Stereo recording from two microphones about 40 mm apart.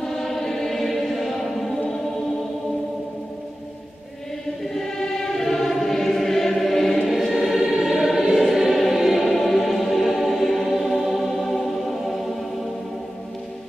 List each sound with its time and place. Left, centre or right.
0.0 s choir: centre
4.7 s choir: centre
7.0 s choir: centre
9.3 s music: centre